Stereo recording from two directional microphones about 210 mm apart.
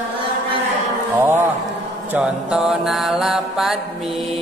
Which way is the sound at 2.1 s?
5° right (ahead or behind).